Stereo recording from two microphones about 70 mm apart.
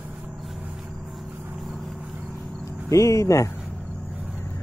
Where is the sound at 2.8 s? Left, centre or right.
Left.